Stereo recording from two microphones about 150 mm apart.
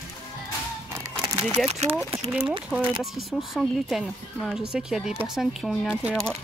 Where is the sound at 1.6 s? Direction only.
45° right (ahead or behind).